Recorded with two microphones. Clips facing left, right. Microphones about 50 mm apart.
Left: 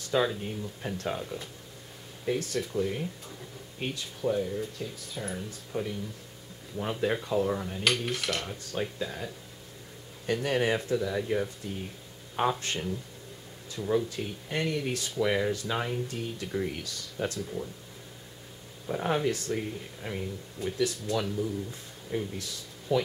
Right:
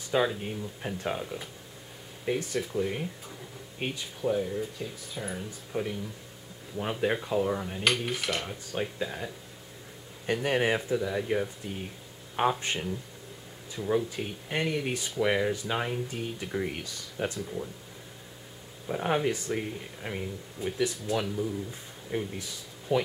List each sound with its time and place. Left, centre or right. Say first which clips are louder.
0.0 s speech: even; centre
18.9 s speech: even; centre